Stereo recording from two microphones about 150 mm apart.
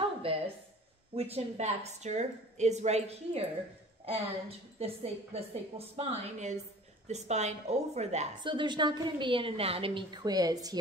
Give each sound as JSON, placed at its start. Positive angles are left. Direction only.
{"t": 0.2, "sound": "a sound", "side_deg": -35}
{"t": 1.1, "sound": "a woman's voice", "side_deg": -45}
{"t": 8.4, "sound": "a woman's voice", "side_deg": -30}